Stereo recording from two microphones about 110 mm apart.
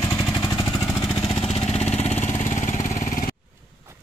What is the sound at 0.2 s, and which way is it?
Vehicle, 40° left (ahead or behind).